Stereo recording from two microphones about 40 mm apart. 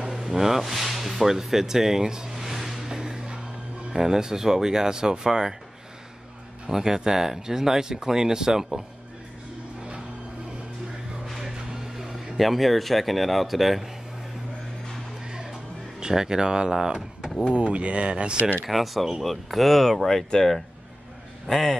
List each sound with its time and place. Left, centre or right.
0.0 s a sound: centre
3.9 s speech: centre
6.7 s speech: centre
11.2 s a sound: centre
16.0 s speech: centre
17.5 s speech: right
18.7 s a man's voice: centre